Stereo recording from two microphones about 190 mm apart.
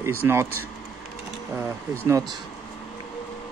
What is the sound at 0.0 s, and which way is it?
Speech, 15° right (ahead or behind).